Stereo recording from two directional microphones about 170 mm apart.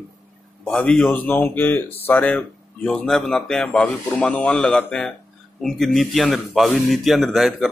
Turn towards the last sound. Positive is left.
turn(degrees=0)  # may be behind; listen again after turning